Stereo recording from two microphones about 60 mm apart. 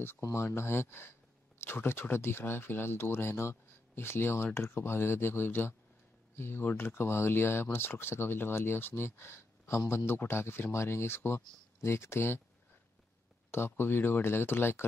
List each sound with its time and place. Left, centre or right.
0.3 s speech: left
13.5 s speech: left